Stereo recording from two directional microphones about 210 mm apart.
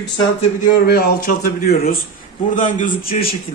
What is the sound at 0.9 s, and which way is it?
A man's voice, 45° left (ahead or behind).